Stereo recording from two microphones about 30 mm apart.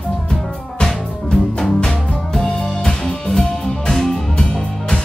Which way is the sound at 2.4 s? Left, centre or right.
Left.